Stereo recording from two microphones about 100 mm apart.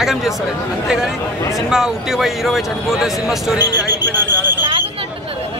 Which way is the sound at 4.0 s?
20° right (ahead or behind).